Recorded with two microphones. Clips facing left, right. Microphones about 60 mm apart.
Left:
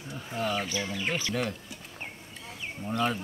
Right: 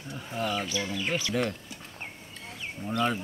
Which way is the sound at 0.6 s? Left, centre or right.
Left.